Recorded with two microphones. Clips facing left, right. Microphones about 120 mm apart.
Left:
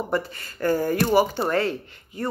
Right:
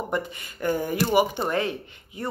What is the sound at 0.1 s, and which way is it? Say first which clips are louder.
A woman's voice: left 2 dB; 15° right (ahead or behind).